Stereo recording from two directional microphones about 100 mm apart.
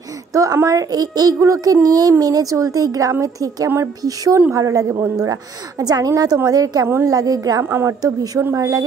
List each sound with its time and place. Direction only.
0.3 s a child's voice: 35° right (ahead or behind)